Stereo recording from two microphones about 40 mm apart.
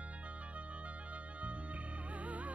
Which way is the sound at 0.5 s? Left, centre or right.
Right.